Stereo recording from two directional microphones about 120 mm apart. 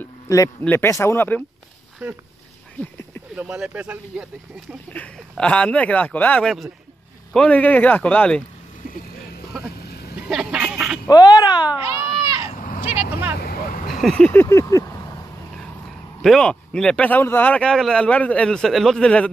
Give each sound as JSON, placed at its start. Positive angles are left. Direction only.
{"t": 0.7, "sound": "speech", "side_deg": 20}
{"t": 2.0, "sound": "speech", "side_deg": -10}
{"t": 3.3, "sound": "speech", "side_deg": -5}
{"t": 4.9, "sound": "speech", "side_deg": 10}
{"t": 10.2, "sound": "a sound", "side_deg": -5}
{"t": 11.1, "sound": "speech", "side_deg": 35}
{"t": 11.8, "sound": "baby cry", "side_deg": -25}
{"t": 12.8, "sound": "vehicle", "side_deg": -20}
{"t": 14.0, "sound": "vehicle", "side_deg": 10}
{"t": 16.2, "sound": "speech", "side_deg": 5}